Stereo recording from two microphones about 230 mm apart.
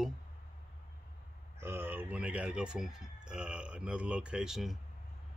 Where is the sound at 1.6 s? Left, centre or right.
Centre.